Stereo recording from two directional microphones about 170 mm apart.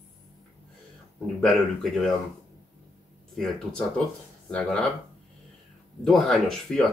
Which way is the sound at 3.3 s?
Centre (ahead or behind).